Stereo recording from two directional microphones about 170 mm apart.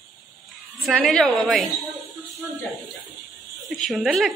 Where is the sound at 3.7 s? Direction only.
Centre (ahead or behind).